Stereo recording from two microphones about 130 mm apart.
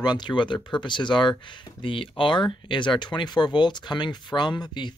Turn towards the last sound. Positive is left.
turn(degrees=35)  # may be behind; listen again after turning